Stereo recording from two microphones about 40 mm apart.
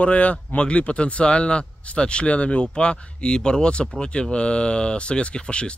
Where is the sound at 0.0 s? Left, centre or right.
Left.